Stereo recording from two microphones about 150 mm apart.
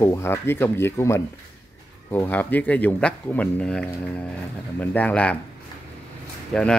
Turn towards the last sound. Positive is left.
turn(degrees=5)  # may be behind; listen again after turning